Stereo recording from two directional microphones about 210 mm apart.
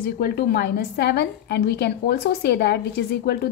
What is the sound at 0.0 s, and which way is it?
A woman's voice, 45° left (ahead or behind).